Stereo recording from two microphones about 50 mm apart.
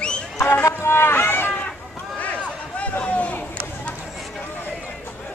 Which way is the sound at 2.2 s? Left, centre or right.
Left.